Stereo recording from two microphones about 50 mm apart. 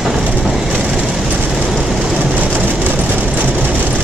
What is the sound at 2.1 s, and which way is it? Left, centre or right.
Train, right.